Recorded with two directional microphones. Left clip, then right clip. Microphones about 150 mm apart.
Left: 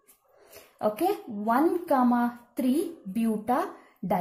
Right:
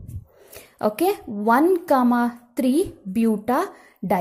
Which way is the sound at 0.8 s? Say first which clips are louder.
Right 5 dB; 45° right (ahead or behind).